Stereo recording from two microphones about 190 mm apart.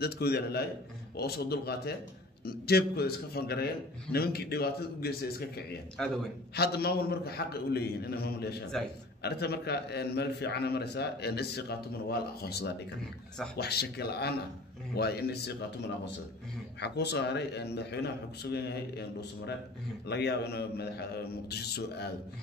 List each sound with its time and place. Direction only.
0.0 s a man's voice: 55° left (ahead or behind)
6.0 s a man's voice: 5° left (ahead or behind)
6.5 s a man's voice: 55° left (ahead or behind)